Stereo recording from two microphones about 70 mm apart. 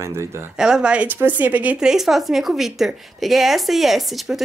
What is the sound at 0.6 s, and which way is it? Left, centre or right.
Speech, centre.